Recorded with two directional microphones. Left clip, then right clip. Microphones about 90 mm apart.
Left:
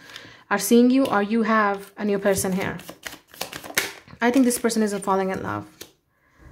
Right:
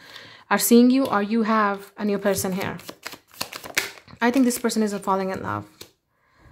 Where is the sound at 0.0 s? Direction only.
20° right (ahead or behind).